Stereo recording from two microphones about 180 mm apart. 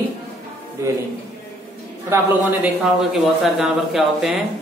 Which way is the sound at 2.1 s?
15° right (ahead or behind).